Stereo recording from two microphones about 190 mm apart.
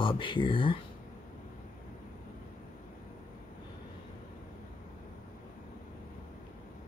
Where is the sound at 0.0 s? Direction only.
25° left (ahead or behind).